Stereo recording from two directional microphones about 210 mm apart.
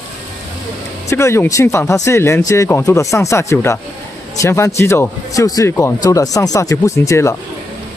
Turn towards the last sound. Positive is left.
turn(degrees=15)  # may be behind; listen again after turning